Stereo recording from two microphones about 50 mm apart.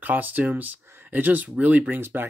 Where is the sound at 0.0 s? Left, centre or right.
Right.